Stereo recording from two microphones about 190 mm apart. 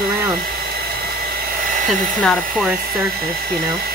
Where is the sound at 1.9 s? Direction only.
Centre (ahead or behind).